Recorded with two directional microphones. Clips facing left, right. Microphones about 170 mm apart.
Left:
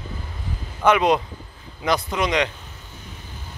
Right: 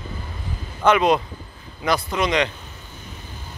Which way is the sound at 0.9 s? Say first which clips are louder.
Right 1 dB; 15° left (ahead or behind).